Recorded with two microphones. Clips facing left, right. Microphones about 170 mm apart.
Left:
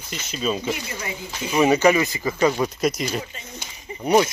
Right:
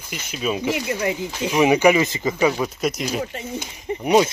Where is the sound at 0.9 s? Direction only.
75° right (ahead or behind).